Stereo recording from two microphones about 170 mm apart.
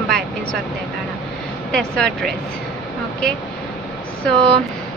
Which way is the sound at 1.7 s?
5° left (ahead or behind).